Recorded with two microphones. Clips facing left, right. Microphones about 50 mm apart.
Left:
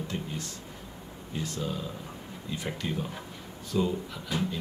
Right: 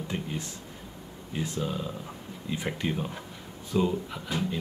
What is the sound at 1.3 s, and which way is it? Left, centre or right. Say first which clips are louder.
Speech: right 2 dB; right.